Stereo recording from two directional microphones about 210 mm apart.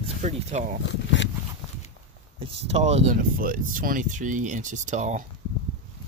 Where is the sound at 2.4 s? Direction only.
30° right (ahead or behind).